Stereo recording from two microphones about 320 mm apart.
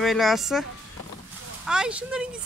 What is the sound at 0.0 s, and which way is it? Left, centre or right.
Speech, centre.